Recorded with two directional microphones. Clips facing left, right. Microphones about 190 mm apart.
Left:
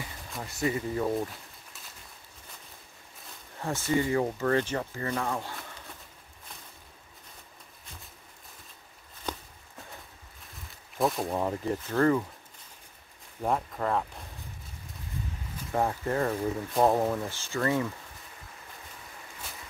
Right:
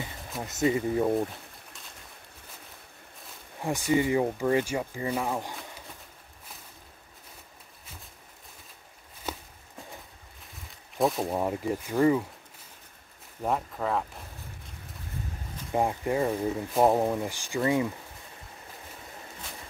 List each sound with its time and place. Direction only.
0.4 s speech: 20° right (ahead or behind)
3.6 s speech: 15° right (ahead or behind)
9.3 s walk: 5° right (ahead or behind)
11.0 s speech: centre (ahead or behind)
13.4 s speech: centre (ahead or behind)
15.7 s speech: 15° right (ahead or behind)